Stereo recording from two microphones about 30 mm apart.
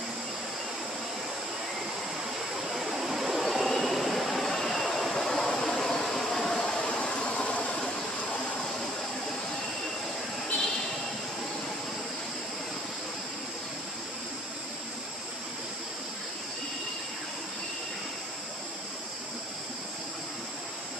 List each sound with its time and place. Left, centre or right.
2.5 s a sound: centre
4.4 s train: centre
6.0 s vehicle: centre
6.6 s train: left
8.3 s vehicle: left